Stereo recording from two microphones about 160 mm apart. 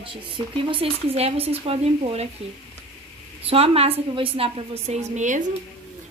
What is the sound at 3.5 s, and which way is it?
Speech, 40° right (ahead or behind).